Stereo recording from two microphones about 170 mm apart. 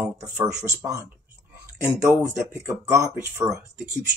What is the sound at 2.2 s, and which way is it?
Speech, 15° right (ahead or behind).